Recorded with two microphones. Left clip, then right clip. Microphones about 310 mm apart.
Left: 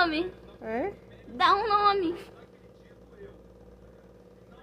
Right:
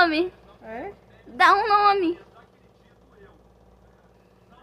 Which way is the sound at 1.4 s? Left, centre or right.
Right.